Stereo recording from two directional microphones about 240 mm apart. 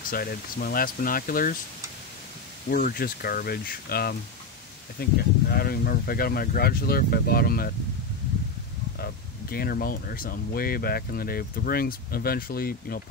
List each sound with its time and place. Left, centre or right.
0.1 s speech: left
2.7 s speech: left
9.0 s speech: left